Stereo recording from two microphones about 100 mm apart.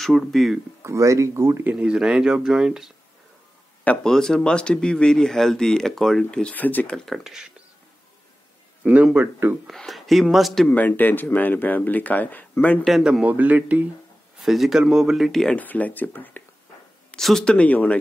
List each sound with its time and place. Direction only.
0.0 s speech: centre (ahead or behind)
0.8 s speech: 30° right (ahead or behind); by 2.9 s 5° right (ahead or behind)
4.0 s speech: 5° left (ahead or behind)
7.1 s speech: 5° right (ahead or behind)
8.8 s speech: 15° right (ahead or behind)
9.7 s speech: centre (ahead or behind)
10.7 s speech: 15° left (ahead or behind)
12.8 s speech: centre (ahead or behind)
13.2 s speech: 15° right (ahead or behind)
14.4 s speech: centre (ahead or behind)
15.6 s speech: 15° left (ahead or behind)
17.1 s speech: 5° left (ahead or behind)